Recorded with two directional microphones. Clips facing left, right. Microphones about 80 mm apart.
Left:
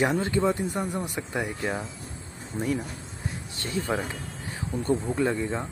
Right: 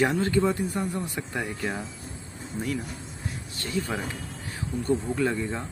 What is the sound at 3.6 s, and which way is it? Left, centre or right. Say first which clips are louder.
Speech: left 1 dB; left.